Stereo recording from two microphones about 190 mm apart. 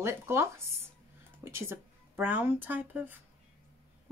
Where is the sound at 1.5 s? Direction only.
15° right (ahead or behind).